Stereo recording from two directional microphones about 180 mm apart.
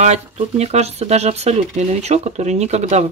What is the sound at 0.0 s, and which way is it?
Speech, 35° right (ahead or behind).